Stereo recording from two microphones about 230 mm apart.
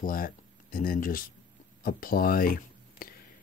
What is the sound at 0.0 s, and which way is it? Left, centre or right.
Speech, left.